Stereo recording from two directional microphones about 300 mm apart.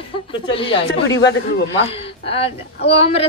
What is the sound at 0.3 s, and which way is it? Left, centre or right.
A woman's voice, centre.